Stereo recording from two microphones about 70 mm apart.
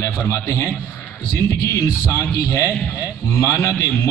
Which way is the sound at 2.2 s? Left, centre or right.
Left.